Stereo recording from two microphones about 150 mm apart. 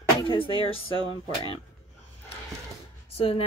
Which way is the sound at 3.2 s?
40° left (ahead or behind).